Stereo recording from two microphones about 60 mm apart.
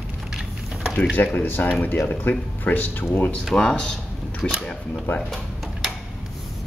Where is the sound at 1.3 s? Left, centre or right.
Left.